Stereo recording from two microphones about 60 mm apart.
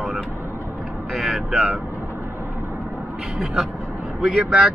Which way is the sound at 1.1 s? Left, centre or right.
Centre.